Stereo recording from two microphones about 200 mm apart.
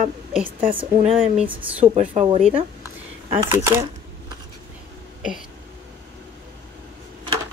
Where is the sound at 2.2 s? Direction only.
30° right (ahead or behind).